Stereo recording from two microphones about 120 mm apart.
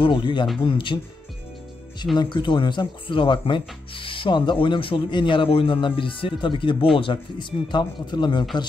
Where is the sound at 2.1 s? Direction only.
40° left (ahead or behind).